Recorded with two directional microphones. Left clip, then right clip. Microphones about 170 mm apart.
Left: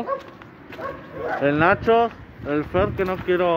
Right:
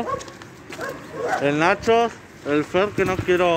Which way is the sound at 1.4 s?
40° left (ahead or behind).